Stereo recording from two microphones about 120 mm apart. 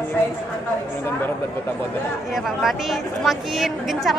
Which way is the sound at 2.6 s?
Centre (ahead or behind).